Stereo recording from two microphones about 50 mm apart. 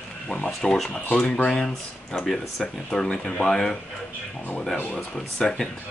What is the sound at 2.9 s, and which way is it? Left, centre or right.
Speech, centre.